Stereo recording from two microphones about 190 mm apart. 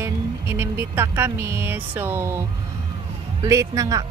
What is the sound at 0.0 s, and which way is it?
Speech, 10° right (ahead or behind).